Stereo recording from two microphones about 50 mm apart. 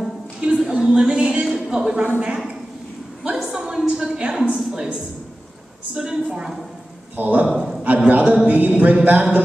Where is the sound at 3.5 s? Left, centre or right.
Centre.